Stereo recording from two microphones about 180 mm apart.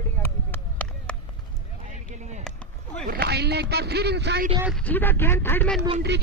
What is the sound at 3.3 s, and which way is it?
Speech, 65° right (ahead or behind).